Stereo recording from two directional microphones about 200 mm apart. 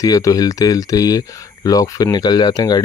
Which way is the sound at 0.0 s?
15° left (ahead or behind).